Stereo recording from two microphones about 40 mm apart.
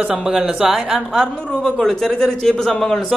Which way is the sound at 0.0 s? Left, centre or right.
Centre.